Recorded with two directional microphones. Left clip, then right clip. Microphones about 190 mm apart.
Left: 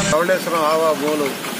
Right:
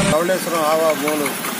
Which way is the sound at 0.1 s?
5° left (ahead or behind).